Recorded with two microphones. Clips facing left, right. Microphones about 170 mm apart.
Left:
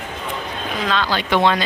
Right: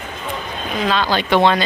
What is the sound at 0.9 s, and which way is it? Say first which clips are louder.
Speech: right 3 dB; 15° right (ahead or behind).